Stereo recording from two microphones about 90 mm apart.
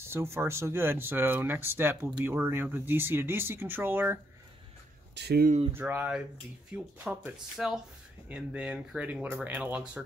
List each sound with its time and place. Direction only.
0.0 s speech: 30° right (ahead or behind)
5.7 s speech: 25° right (ahead or behind)
7.5 s speech: 5° right (ahead or behind)